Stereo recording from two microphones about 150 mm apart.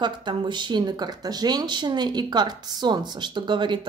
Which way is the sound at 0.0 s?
30° right (ahead or behind).